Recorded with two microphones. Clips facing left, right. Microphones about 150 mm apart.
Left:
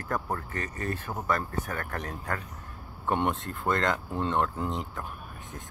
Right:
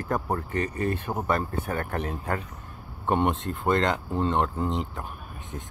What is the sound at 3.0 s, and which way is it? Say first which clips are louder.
Speech: right 3 dB; 15° right (ahead or behind).